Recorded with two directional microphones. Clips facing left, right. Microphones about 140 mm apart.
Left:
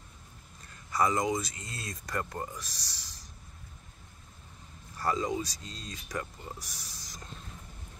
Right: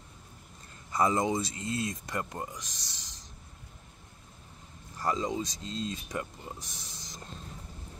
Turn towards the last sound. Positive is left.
turn(degrees=-25)  # may be behind; listen again after turning